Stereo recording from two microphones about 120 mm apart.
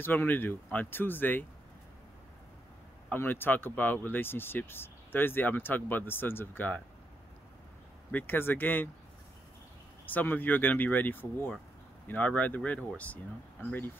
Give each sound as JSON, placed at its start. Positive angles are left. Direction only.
{"t": 0.0, "sound": "speech", "side_deg": 15}
{"t": 3.1, "sound": "speech", "side_deg": 15}
{"t": 8.1, "sound": "speech", "side_deg": 15}
{"t": 10.0, "sound": "speech", "side_deg": 15}